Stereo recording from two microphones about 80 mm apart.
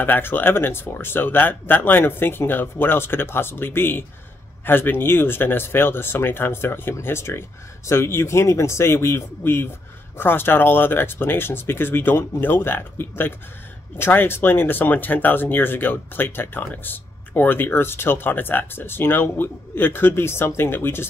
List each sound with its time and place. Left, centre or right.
0.0 s speech: left